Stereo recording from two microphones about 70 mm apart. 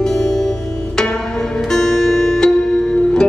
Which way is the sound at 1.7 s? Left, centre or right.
Centre.